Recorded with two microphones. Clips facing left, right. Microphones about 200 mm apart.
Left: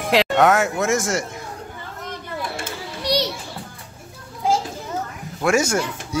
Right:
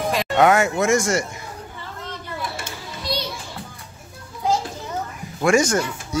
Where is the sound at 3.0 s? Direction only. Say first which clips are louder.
Left 6 dB; 75° left (ahead or behind).